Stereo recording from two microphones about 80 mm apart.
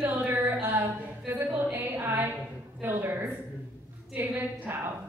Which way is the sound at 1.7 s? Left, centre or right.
Right.